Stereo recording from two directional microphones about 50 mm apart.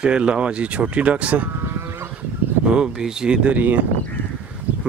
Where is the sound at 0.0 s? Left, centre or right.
Right.